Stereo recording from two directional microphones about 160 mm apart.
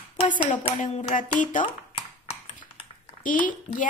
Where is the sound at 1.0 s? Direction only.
55° left (ahead or behind).